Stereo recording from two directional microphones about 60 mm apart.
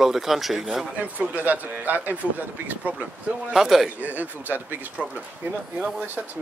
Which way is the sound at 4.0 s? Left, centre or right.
Right.